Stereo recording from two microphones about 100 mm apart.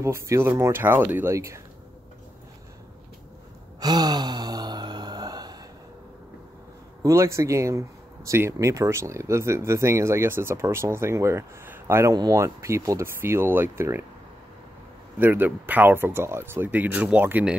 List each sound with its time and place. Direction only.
0.0 s speech: 30° right (ahead or behind)
3.8 s sigh: 45° right (ahead or behind)
7.0 s speech: 30° right (ahead or behind)
12.1 s speech: 35° right (ahead or behind)
15.1 s speech: 20° right (ahead or behind)